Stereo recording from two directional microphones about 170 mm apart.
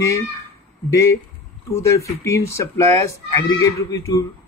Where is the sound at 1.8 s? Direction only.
15° left (ahead or behind).